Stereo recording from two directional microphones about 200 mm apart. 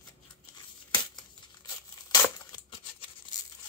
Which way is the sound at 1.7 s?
15° left (ahead or behind).